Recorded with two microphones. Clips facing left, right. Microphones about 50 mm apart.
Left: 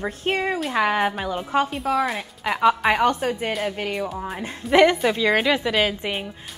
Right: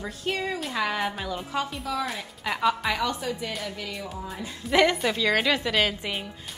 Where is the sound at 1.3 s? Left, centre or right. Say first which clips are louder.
Left 7 dB; left.